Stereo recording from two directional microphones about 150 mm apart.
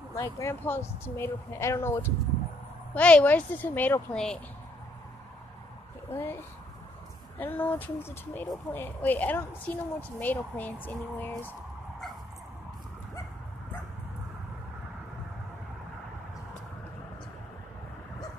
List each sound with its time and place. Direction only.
0.1 s speech: 20° left (ahead or behind)
6.1 s speech: 15° left (ahead or behind)